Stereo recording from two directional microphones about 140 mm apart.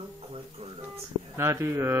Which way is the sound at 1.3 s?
20° right (ahead or behind).